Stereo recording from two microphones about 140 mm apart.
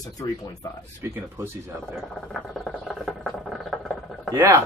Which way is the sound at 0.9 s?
20° right (ahead or behind).